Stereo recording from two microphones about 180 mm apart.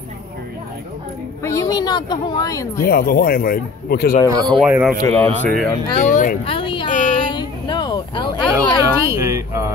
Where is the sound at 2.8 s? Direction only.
55° left (ahead or behind).